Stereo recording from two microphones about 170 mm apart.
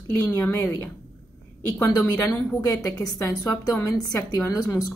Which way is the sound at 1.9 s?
15° left (ahead or behind).